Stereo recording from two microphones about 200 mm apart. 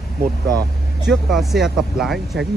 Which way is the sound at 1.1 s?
Centre (ahead or behind).